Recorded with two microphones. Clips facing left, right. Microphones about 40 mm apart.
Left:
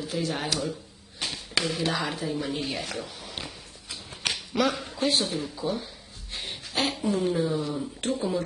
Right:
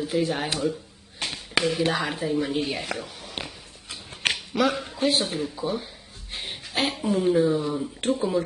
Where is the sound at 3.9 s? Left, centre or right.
Centre.